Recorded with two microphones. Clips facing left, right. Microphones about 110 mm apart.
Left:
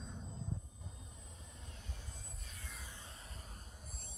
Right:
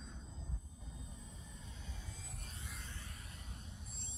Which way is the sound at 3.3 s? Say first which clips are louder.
Right 1 dB; 40° left (ahead or behind).